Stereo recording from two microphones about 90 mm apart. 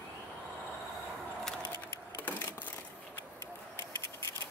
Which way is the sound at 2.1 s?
20° left (ahead or behind).